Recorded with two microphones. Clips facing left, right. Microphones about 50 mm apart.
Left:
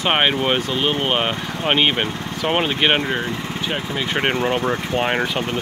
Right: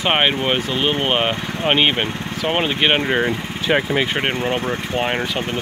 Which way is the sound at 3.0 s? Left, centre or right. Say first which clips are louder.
Right 4 dB; right.